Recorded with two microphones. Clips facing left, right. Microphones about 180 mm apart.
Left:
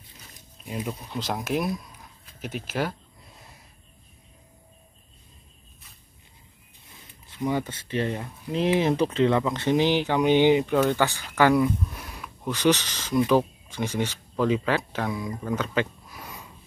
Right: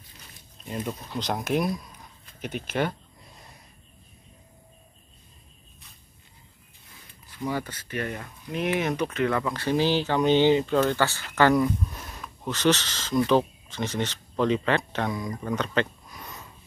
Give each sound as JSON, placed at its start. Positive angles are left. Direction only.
{"t": 0.7, "sound": "speech", "side_deg": 5}
{"t": 2.2, "sound": "a sound", "side_deg": 0}
{"t": 7.2, "sound": "speech", "side_deg": 20}